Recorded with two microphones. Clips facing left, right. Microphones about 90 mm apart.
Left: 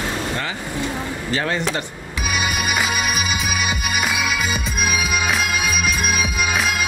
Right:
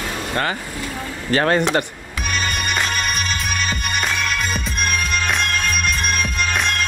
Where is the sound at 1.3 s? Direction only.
55° right (ahead or behind).